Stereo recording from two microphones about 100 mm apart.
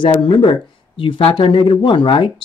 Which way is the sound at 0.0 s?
55° left (ahead or behind).